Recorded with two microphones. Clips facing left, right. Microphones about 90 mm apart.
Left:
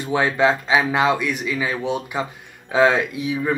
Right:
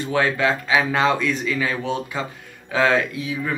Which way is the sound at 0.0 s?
20° left (ahead or behind).